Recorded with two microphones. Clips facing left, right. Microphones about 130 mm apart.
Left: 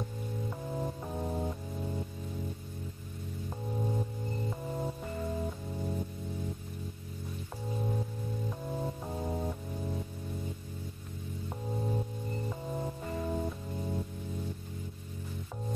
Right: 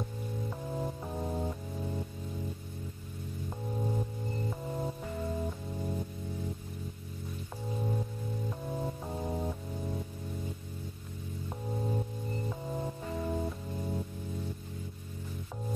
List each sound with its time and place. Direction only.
0.5 s music: centre (ahead or behind)
3.4 s music: centre (ahead or behind)
7.7 s music: centre (ahead or behind)
11.4 s music: centre (ahead or behind)